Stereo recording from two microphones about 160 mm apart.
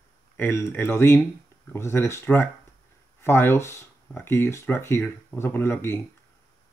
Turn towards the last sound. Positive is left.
turn(degrees=15)  # may be behind; listen again after turning